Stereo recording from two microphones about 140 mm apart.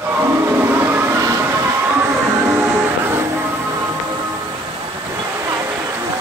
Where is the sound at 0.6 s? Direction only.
15° right (ahead or behind).